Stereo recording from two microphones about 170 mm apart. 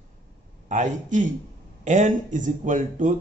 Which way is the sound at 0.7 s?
45° right (ahead or behind).